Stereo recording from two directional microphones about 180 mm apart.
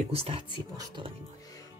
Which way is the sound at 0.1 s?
35° right (ahead or behind).